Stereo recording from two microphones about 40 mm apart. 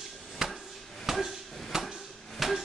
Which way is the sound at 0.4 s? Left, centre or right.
Centre.